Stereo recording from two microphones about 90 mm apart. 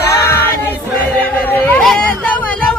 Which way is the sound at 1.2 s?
20° left (ahead or behind).